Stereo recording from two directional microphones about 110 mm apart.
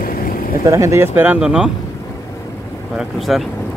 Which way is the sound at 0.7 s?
25° right (ahead or behind).